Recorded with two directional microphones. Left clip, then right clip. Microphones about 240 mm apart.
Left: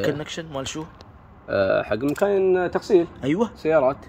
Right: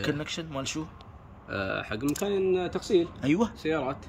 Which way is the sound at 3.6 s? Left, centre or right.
Left.